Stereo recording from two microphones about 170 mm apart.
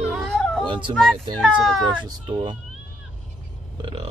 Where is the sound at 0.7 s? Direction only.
30° right (ahead or behind).